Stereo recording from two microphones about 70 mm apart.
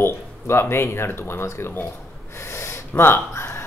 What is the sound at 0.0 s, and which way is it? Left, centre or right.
Speech, left.